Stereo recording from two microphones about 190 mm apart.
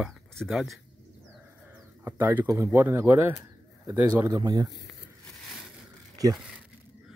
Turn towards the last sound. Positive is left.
turn(degrees=-20)  # may be behind; listen again after turning